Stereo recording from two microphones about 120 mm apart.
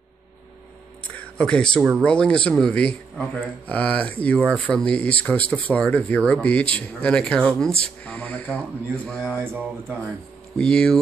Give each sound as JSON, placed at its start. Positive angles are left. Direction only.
{"t": 1.1, "sound": "a man's voice", "side_deg": 10}
{"t": 9.4, "sound": "speech", "side_deg": -15}
{"t": 10.6, "sound": "a man's voice", "side_deg": 5}